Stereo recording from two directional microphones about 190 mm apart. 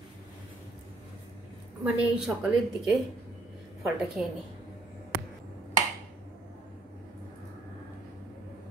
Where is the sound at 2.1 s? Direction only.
5° right (ahead or behind).